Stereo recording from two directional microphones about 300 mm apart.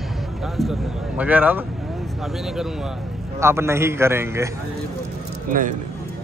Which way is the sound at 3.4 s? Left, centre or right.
Centre.